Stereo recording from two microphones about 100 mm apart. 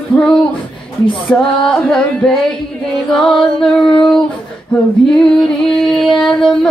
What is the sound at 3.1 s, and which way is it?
Female singing, 5° left (ahead or behind).